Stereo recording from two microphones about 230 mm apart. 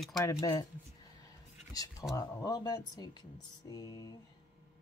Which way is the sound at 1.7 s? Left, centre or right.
Centre.